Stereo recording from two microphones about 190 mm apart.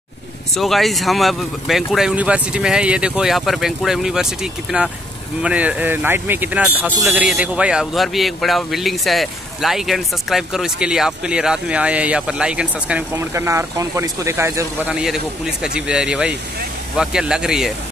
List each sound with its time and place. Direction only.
0.6 s a man's voice: centre (ahead or behind)
15.0 s a man's voice: 5° right (ahead or behind)